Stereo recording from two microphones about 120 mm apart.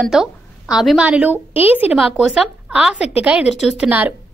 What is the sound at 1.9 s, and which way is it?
A woman's voice, 5° right (ahead or behind).